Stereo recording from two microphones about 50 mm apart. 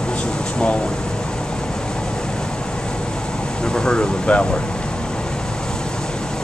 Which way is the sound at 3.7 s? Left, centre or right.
Centre.